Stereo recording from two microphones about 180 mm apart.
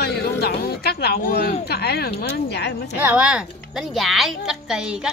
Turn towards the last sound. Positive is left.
turn(degrees=-5)  # may be behind; listen again after turning